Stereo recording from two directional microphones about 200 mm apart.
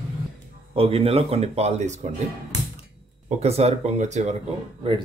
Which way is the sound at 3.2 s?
30° right (ahead or behind).